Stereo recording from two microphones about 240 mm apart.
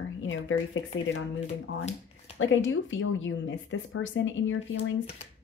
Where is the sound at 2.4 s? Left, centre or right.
Left.